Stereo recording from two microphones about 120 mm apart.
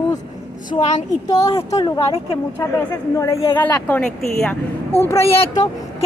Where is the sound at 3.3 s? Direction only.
45° left (ahead or behind).